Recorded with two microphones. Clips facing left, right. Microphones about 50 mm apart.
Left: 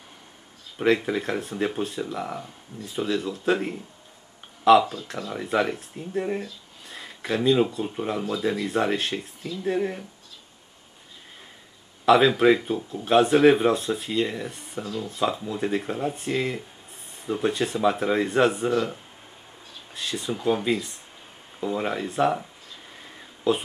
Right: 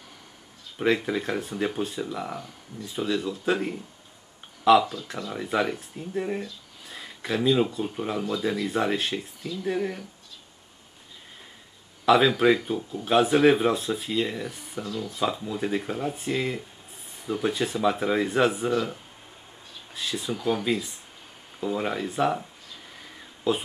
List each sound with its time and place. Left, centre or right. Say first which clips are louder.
0.7 s speech: left 2 dB; centre
9.8 s speech: left 2 dB; centre
12.1 s speech: left 2 dB; centre
14.8 s speech: left 1 dB; centre
15.0 s speech: left 2 dB; centre
22.9 s a sound: left 1 dB; centre
23.5 s speech: left 2 dB; centre